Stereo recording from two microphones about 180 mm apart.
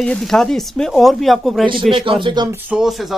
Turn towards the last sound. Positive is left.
turn(degrees=0)  # may be behind; listen again after turning